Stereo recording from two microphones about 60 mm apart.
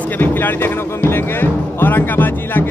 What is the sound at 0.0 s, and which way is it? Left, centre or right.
Speech, left.